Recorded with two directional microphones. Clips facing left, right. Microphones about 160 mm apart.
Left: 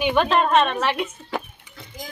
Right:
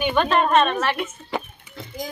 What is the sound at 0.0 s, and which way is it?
Speech, 10° left (ahead or behind).